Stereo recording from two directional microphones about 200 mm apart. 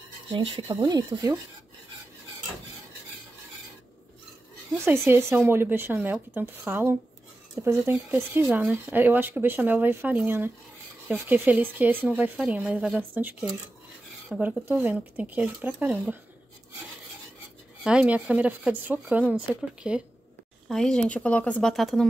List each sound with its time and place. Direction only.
0.5 s speech: 25° right (ahead or behind)
4.8 s speech: 10° right (ahead or behind)
17.8 s speech: 5° right (ahead or behind)